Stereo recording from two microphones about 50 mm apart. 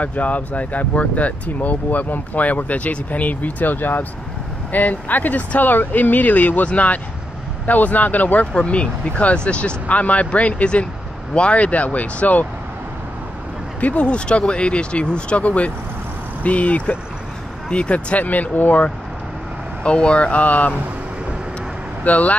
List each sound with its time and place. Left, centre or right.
0.0 s speech: left
8.5 s speech: left
13.7 s speech: left
19.8 s speech: left
22.0 s speech: left